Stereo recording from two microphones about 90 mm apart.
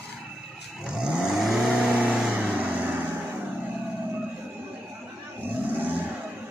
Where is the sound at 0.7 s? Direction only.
10° right (ahead or behind).